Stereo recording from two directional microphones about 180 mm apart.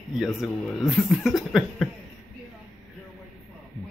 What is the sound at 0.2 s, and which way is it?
Speech, centre (ahead or behind).